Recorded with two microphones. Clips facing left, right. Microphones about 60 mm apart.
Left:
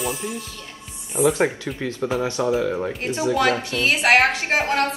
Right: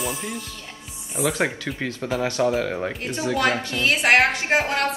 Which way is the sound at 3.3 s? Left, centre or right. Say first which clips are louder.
Left 2 dB; right.